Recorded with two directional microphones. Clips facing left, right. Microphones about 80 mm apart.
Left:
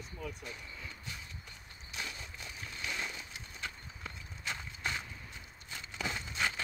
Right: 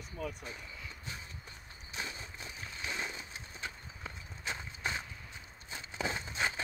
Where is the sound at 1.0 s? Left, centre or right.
Right.